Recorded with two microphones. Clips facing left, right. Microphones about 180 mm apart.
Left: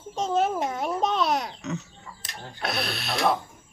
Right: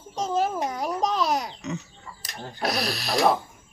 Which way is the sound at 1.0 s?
Centre (ahead or behind).